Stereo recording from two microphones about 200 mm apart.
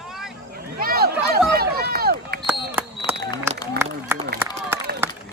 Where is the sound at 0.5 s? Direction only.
50° right (ahead or behind).